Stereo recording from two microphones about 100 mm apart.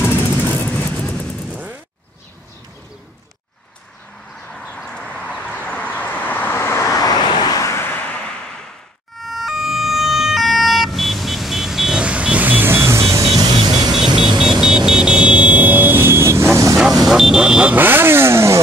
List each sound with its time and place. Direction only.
0.1 s vehicle: 20° left (ahead or behind)
1.5 s a sound: 15° right (ahead or behind)
4.5 s vehicle: 10° left (ahead or behind); by 7.7 s 40° left (ahead or behind)
7.7 s vehicle: 20° left (ahead or behind)
9.2 s emergency vehicle: centre (ahead or behind); by 13.2 s 30° right (ahead or behind)
13.9 s vehicle: 5° right (ahead or behind); by 16.4 s 25° right (ahead or behind)
16.7 s vehicle: centre (ahead or behind)
17.7 s motorcycle: 20° right (ahead or behind)